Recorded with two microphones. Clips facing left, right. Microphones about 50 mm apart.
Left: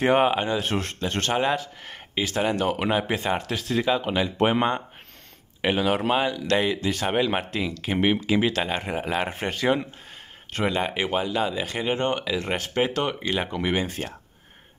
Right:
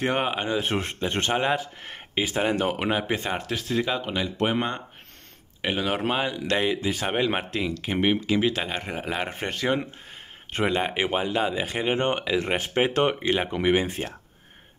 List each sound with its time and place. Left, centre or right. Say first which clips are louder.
0.0 s speech: left 5 dB; centre
0.6 s speech: even; centre
5.6 s speech: left 3 dB; centre
10.5 s speech: even; centre; by 13.3 s right
13.3 s speech: right 3 dB; centre